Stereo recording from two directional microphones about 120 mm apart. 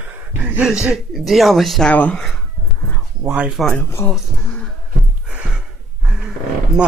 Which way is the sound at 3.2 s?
10° right (ahead or behind).